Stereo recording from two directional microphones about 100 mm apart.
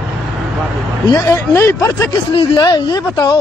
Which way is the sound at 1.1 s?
25° left (ahead or behind).